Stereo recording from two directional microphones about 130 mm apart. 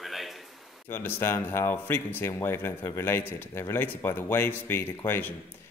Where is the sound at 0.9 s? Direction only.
20° left (ahead or behind).